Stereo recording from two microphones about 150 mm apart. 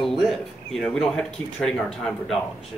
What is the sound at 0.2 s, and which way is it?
Speech, centre (ahead or behind).